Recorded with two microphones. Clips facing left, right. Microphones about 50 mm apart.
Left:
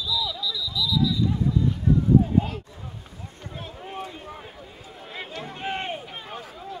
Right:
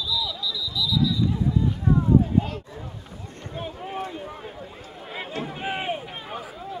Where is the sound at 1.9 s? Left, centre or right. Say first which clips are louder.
Even; right.